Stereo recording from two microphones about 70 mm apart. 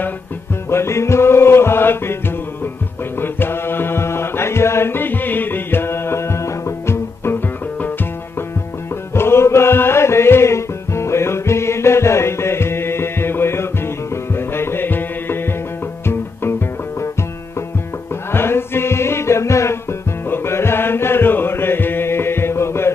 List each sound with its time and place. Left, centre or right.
0.7 s music: left
3.2 s mantra: left
9.1 s music: left
18.3 s music: left